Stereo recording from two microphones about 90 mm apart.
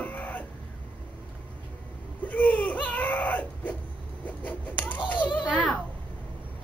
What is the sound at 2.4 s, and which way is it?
Baby cry, 15° left (ahead or behind).